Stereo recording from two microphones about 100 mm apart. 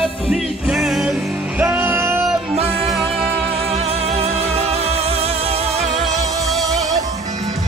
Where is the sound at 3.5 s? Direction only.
80° right.